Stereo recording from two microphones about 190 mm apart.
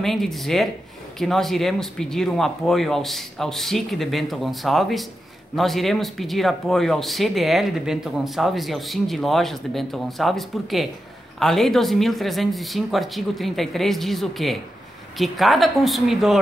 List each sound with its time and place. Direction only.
0.0 s speech: centre (ahead or behind)